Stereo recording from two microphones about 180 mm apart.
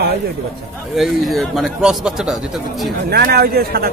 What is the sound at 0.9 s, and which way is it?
A man's voice, centre (ahead or behind).